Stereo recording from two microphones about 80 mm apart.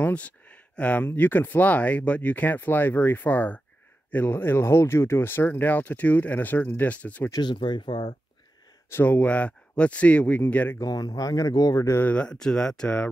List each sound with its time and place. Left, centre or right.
0.0 s speech: centre
7.4 s speech: left
8.9 s speech: left
10.8 s speech: left
12.1 s speech: centre